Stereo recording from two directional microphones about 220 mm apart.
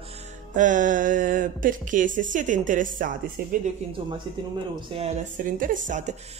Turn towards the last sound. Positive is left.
turn(degrees=-35)  # may be behind; listen again after turning